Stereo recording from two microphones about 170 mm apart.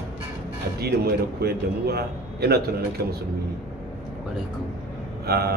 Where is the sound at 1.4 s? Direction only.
70° right (ahead or behind).